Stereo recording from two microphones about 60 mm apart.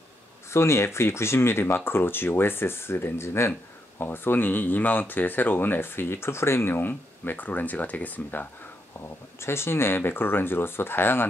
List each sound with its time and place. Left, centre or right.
0.5 s speech: left
9.4 s speech: left